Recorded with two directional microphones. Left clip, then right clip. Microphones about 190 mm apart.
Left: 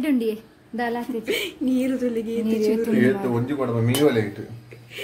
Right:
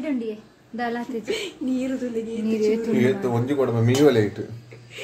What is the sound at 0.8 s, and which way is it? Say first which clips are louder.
A woman's voice: left 1 dB; 30° left (ahead or behind).